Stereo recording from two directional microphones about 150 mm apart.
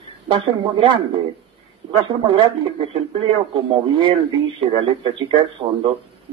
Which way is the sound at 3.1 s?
35° right (ahead or behind).